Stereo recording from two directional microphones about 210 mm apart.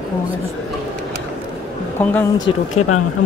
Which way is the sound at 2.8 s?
90° left.